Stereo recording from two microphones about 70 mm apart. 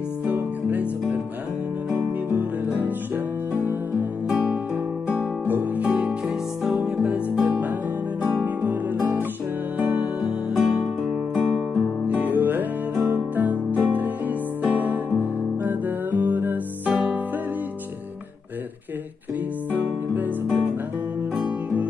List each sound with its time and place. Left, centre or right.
0.2 s music: right
5.4 s guitar: right
6.2 s music: centre
10.6 s music: centre
12.1 s music: right
19.7 s music: right